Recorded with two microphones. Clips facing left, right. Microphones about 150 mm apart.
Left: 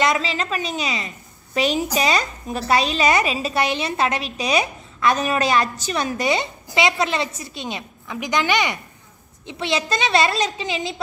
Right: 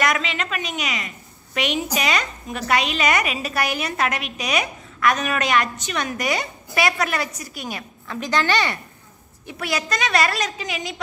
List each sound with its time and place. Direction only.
0.0 s a woman's voice: 30° left (ahead or behind)